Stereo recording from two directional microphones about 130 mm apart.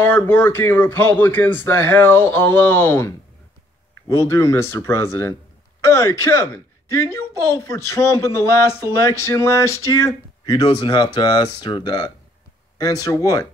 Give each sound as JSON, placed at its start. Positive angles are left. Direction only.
{"t": 0.0, "sound": "speech", "side_deg": 15}